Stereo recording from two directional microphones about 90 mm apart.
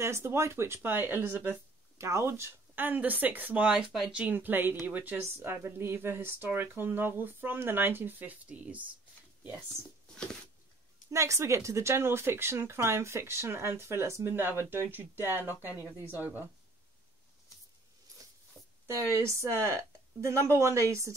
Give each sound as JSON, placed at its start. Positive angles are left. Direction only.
{"t": 0.0, "sound": "speech", "side_deg": -30}
{"t": 11.1, "sound": "speech", "side_deg": -35}
{"t": 19.1, "sound": "a woman's voice", "side_deg": -35}